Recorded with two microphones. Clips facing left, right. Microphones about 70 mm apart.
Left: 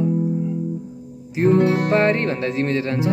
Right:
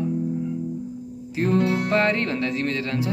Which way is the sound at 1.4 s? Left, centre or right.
Left.